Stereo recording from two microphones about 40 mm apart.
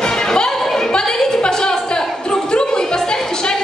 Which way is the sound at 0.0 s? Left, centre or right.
Centre.